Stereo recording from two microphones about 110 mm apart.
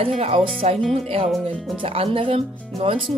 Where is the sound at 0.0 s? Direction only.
70° right (ahead or behind).